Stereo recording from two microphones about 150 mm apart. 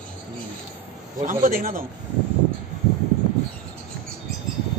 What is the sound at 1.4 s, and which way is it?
Speech, 70° right (ahead or behind).